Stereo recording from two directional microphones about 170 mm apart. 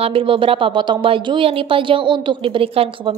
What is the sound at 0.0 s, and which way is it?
A woman's voice, 30° right (ahead or behind).